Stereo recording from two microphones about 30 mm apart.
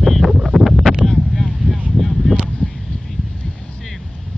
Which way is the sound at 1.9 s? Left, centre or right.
Centre.